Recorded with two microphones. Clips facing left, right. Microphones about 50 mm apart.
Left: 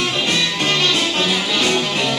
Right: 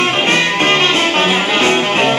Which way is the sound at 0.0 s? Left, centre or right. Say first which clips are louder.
Right 6 dB; right.